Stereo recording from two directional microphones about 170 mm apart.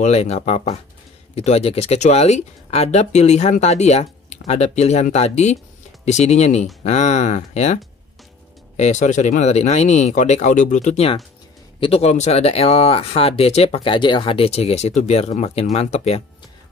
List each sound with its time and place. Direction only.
0.0 s speech: 40° left (ahead or behind)